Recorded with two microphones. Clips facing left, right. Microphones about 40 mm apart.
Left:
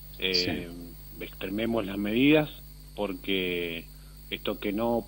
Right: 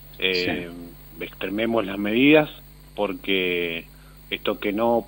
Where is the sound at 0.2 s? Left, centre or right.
Right.